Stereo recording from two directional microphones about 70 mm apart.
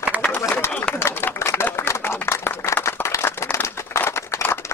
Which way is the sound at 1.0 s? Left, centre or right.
Left.